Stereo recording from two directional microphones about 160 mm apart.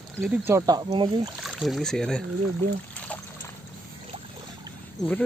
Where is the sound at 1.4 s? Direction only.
Centre (ahead or behind).